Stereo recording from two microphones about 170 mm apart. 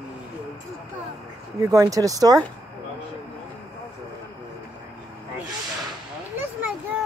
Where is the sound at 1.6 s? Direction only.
20° right (ahead or behind).